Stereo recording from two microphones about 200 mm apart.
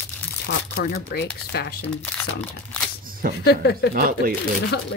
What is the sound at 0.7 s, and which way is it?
Speech, 50° left (ahead or behind).